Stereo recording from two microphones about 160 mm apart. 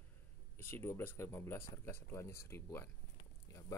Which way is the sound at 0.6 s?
15° left (ahead or behind).